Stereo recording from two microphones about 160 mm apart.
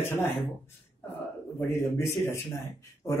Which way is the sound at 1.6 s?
15° left (ahead or behind).